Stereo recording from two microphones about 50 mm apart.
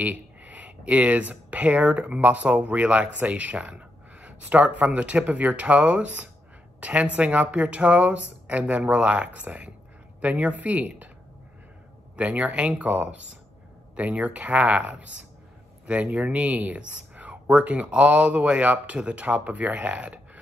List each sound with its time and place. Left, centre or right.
0.0 s speech: right
12.2 s speech: right